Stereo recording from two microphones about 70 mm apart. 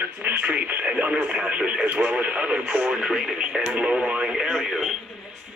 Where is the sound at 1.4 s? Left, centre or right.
Centre.